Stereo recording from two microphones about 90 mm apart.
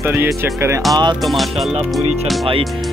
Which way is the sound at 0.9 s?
55° right (ahead or behind).